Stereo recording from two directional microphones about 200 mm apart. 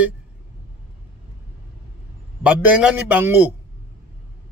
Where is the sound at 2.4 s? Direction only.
5° right (ahead or behind).